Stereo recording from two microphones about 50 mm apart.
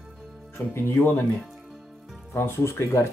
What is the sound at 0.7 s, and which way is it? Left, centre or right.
Speech, left.